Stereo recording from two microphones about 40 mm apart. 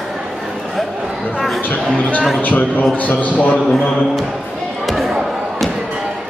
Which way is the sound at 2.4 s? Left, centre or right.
Left.